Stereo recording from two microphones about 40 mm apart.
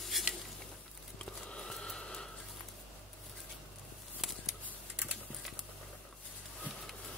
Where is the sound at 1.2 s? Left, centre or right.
Left.